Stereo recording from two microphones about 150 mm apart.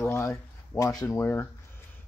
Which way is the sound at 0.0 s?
15° left (ahead or behind).